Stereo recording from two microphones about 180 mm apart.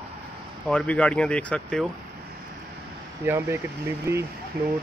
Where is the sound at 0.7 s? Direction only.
5° left (ahead or behind).